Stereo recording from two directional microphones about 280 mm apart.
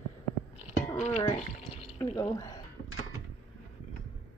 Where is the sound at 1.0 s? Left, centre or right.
Left.